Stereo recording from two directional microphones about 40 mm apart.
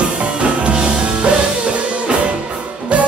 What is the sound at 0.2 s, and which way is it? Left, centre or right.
Music, right.